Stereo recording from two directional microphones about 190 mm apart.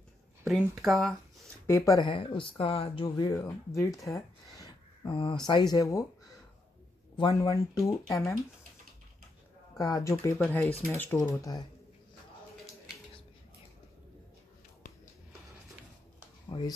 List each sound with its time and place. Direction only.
0.5 s speech: centre (ahead or behind)
1.7 s speech: 15° left (ahead or behind)
5.0 s speech: 25° left (ahead or behind)
7.2 s speech: 20° left (ahead or behind)
9.8 s speech: 15° left (ahead or behind)
11.2 s speech: 20° left (ahead or behind)
16.4 s a sound: 20° left (ahead or behind)